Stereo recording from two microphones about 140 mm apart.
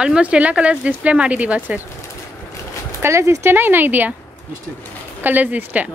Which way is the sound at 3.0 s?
20° right (ahead or behind).